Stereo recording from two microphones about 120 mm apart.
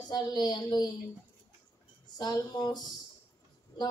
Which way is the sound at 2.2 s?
35° left (ahead or behind).